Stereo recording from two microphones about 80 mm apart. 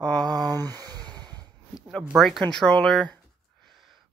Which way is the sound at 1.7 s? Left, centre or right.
Centre.